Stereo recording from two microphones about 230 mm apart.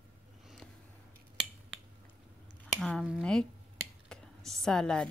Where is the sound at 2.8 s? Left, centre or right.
Centre.